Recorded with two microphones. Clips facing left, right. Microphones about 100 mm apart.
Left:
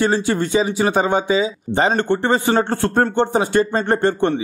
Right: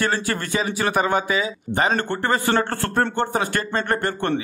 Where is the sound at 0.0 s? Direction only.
20° left (ahead or behind).